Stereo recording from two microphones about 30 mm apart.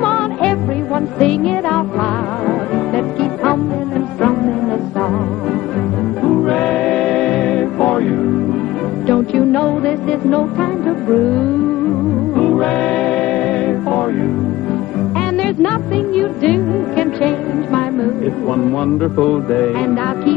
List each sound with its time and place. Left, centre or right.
0.0 s music: left
6.2 s music: left
12.4 s choir: left
15.3 s music: left